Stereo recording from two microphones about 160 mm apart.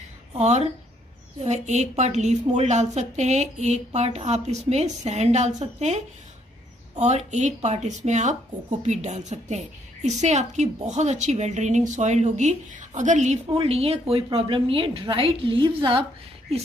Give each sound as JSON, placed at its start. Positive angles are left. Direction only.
{"t": 0.4, "sound": "a woman's voice", "side_deg": -45}